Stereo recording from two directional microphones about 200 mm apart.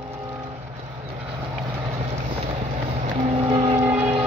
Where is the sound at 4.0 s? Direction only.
30° right (ahead or behind).